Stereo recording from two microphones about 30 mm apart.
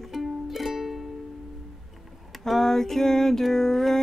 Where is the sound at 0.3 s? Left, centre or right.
Centre.